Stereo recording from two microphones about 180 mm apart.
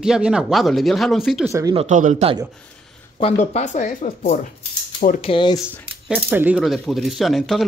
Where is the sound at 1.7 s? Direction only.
35° right (ahead or behind).